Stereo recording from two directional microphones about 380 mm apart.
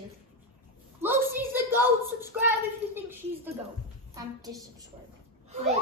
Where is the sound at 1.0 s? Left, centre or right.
Centre.